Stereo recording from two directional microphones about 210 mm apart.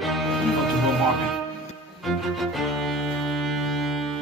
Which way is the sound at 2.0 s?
Centre (ahead or behind).